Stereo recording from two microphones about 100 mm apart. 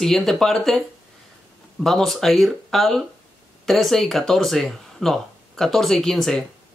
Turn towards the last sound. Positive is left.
turn(degrees=5)  # may be behind; listen again after turning